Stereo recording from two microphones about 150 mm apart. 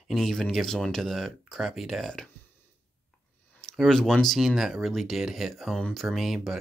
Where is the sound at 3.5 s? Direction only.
Centre (ahead or behind).